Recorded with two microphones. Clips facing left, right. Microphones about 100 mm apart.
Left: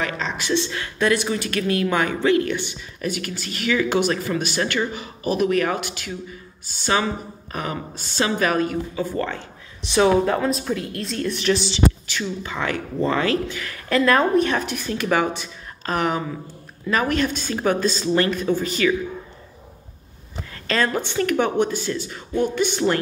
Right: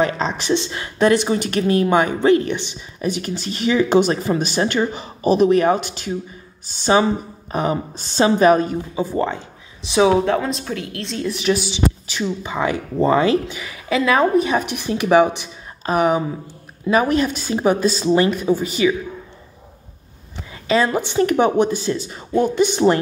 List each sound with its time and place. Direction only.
0.0 s speech: 30° right (ahead or behind)
9.9 s speech: 5° right (ahead or behind)
20.6 s speech: 15° right (ahead or behind)